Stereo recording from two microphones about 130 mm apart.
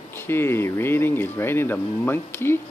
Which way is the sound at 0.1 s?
15° left (ahead or behind).